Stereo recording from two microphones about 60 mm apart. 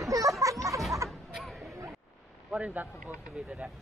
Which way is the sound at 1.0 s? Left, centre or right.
Centre.